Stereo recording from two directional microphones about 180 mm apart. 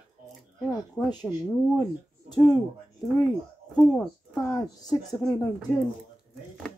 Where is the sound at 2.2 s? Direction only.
20° left (ahead or behind).